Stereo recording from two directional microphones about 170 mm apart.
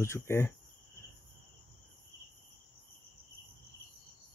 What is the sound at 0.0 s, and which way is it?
Speech, 15° left (ahead or behind).